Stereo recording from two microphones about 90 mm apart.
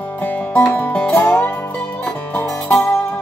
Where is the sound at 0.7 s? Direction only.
15° left (ahead or behind).